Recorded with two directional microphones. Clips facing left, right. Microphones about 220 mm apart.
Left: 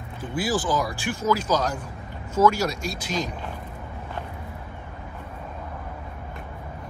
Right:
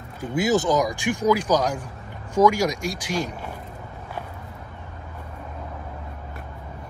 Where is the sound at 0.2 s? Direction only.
20° right (ahead or behind).